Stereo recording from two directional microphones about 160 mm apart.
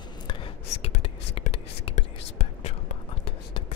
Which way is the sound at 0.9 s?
45° left (ahead or behind).